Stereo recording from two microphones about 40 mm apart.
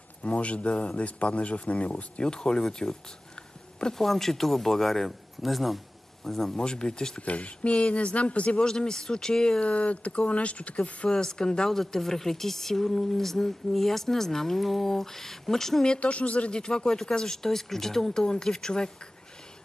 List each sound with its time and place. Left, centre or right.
0.2 s speech: left; by 3.0 s centre
4.0 s speech: centre
6.6 s speech: centre
7.2 s speech: left
8.6 s speech: centre
9.6 s speech: left
11.1 s speech: centre
16.0 s speech: left
16.5 s speech: left